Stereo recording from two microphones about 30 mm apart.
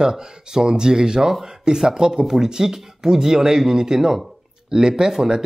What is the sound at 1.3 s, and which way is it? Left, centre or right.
Speech, centre.